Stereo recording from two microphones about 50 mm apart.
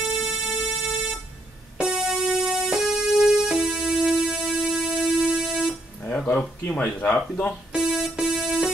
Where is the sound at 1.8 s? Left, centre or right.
Centre.